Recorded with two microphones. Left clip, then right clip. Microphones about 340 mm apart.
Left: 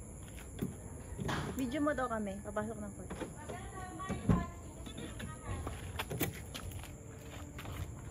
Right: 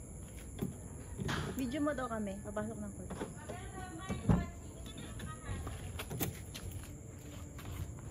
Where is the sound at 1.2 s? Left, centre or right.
Left.